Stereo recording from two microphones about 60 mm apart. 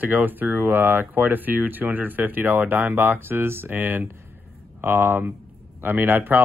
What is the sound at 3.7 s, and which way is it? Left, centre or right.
Speech, right.